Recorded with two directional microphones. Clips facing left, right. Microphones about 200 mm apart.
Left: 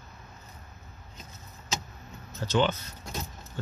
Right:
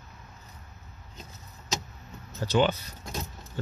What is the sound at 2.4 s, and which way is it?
Speech, 15° right (ahead or behind).